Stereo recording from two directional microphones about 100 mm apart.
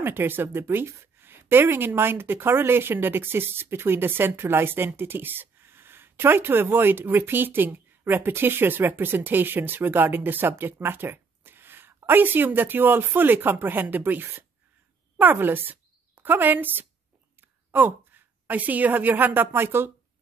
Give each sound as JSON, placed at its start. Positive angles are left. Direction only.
{"t": 0.0, "sound": "a woman's voice", "side_deg": -20}